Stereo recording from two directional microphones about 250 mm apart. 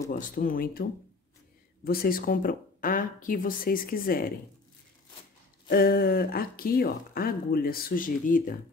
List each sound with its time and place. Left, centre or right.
0.1 s speech: left
1.9 s speech: left
5.7 s speech: left